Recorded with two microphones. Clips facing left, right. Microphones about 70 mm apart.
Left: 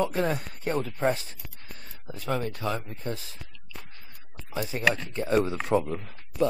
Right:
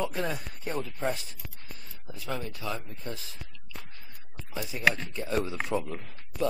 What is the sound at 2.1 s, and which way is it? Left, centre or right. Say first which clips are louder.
Speech: left 6 dB; left.